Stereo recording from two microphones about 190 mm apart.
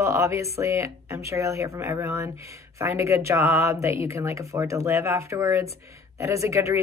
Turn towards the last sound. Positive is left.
turn(degrees=-15)  # may be behind; listen again after turning